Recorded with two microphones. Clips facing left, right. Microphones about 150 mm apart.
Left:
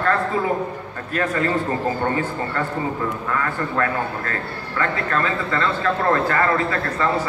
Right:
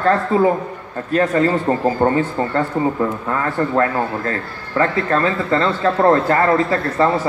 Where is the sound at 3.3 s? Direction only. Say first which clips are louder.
Right 5 dB; 30° right (ahead or behind).